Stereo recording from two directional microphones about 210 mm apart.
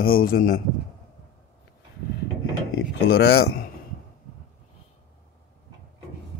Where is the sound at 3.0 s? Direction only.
50° left (ahead or behind).